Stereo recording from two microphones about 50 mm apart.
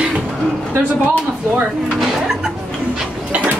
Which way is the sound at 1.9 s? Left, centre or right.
Centre.